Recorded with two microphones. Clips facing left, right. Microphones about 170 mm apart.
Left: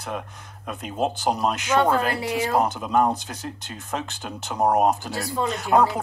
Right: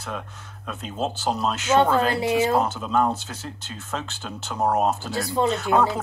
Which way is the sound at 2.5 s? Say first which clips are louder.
Left 1 dB; 15° left (ahead or behind).